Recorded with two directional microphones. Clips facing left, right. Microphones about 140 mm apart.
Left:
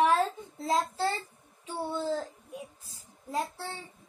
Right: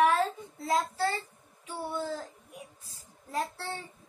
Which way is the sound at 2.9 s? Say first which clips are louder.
Left 4 dB; 15° left (ahead or behind).